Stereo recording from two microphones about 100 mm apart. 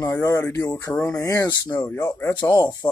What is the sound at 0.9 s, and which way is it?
Speech, 10° left (ahead or behind).